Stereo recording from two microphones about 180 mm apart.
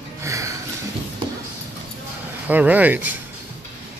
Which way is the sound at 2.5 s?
10° right (ahead or behind).